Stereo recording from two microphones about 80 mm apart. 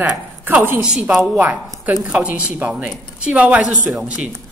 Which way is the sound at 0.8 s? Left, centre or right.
Centre.